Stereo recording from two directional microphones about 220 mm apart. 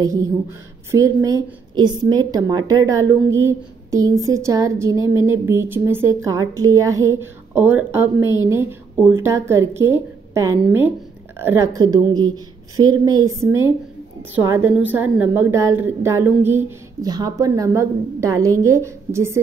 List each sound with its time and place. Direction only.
0.0 s a woman's voice: 15° right (ahead or behind)